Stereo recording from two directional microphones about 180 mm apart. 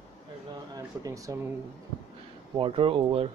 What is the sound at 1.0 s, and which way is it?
Speech, 20° right (ahead or behind).